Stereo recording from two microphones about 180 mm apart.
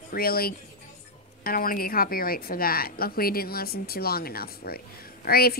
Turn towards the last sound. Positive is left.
turn(degrees=55)  # may be behind; listen again after turning